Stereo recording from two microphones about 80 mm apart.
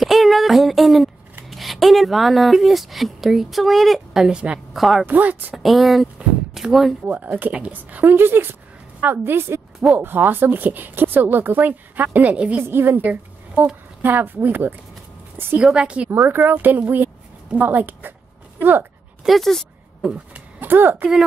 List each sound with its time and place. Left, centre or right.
0.0 s a sound: centre
1.5 s speech: centre
4.7 s speech: centre
5.0 s a woman's voice: right
5.6 s speech: centre
6.1 s a sound: centre
7.1 s a woman's voice: right
12.6 s a woman's voice: right
15.5 s a woman's voice: centre
16.1 s a woman's voice: right
19.2 s a sound: centre
20.1 s speech: right